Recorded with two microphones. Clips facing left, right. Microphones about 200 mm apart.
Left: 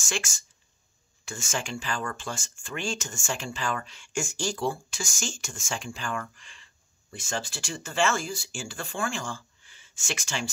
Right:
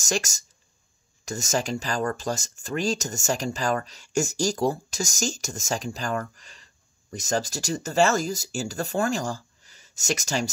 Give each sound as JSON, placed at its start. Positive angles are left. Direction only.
{"t": 0.0, "sound": "speech", "side_deg": -40}